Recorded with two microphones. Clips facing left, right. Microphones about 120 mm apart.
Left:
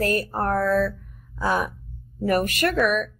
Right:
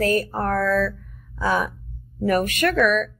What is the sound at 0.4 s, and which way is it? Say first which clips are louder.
A woman's voice: even; 40° left (ahead or behind).